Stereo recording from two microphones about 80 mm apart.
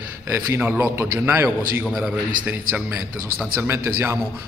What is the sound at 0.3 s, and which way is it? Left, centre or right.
A man's voice, right.